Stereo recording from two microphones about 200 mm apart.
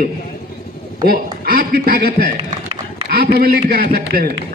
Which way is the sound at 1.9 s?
50° right (ahead or behind).